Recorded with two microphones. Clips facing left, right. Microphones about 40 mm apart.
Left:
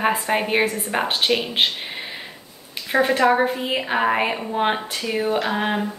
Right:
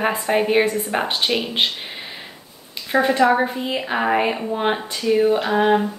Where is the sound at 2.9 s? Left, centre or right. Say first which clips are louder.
Right 1 dB; centre.